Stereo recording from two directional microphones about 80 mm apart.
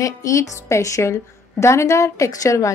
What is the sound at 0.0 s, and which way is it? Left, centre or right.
A woman's voice, left.